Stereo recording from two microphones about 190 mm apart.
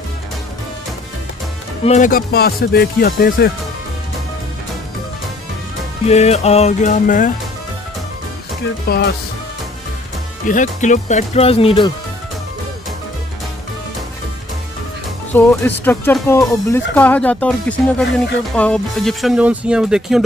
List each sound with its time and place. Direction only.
1.9 s speech: 45° left (ahead or behind)
6.0 s speech: 35° left (ahead or behind)
8.8 s speech: 55° left (ahead or behind)
10.5 s speech: 40° left (ahead or behind)
15.3 s speech: 10° left (ahead or behind)